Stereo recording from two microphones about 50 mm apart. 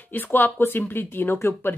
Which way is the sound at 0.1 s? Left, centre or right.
Left.